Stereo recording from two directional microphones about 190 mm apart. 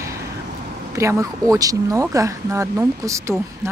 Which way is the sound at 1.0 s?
15° right (ahead or behind).